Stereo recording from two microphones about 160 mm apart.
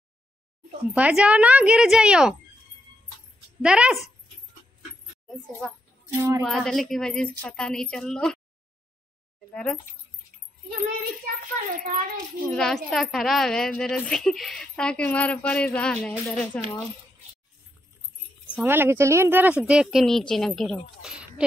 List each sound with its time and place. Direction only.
0.9 s speech: 10° right (ahead or behind)
3.6 s a woman's voice: 5° right (ahead or behind)
5.6 s a woman's voice: centre (ahead or behind)
6.0 s music: 20° right (ahead or behind)
6.4 s a woman's voice: centre (ahead or behind)
9.5 s speech: 5° left (ahead or behind)
11.7 s a child's voice: 55° right (ahead or behind)
12.4 s a woman's voice: 5° left (ahead or behind)
18.5 s speech: 10° right (ahead or behind)